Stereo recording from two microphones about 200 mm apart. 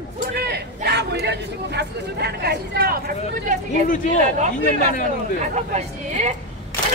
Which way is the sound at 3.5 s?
40° right (ahead or behind).